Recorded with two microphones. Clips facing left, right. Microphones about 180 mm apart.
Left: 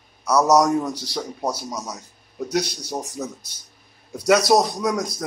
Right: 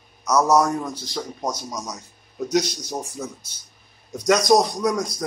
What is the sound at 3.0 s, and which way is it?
Speech, 20° left (ahead or behind).